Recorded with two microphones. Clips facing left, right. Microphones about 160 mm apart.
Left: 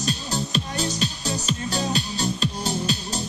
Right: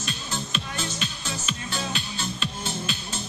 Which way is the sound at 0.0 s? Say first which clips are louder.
Left 6 dB; 35° left (ahead or behind).